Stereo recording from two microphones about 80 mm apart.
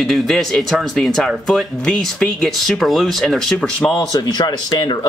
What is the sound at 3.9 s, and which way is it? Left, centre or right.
Speech, left.